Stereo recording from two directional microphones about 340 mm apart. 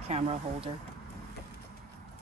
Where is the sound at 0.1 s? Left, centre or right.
Centre.